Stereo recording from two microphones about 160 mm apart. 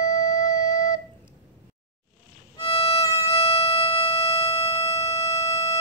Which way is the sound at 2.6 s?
35° left (ahead or behind).